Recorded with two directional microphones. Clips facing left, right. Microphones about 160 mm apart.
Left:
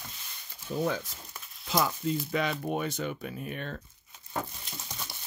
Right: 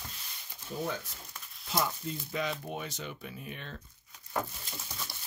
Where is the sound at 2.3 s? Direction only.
65° left (ahead or behind).